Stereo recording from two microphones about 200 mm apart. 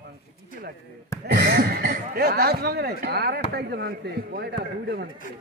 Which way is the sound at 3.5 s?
55° right (ahead or behind).